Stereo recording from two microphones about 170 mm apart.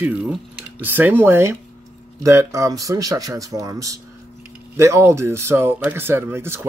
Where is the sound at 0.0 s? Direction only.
10° right (ahead or behind).